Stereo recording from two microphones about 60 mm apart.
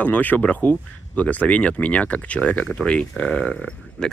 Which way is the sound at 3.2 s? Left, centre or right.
Centre.